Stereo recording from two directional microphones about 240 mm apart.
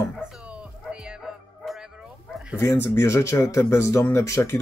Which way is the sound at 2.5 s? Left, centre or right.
Centre.